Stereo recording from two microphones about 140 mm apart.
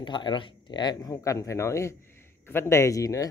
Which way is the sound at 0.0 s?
35° left (ahead or behind).